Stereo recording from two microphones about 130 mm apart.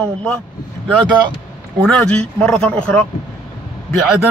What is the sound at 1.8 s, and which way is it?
A man's voice, centre (ahead or behind).